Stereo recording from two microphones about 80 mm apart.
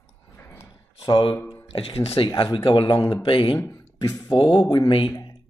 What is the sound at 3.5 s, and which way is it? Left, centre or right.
Speech, left.